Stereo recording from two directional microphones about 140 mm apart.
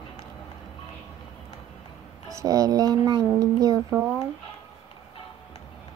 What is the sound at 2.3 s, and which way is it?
Speech, 25° right (ahead or behind).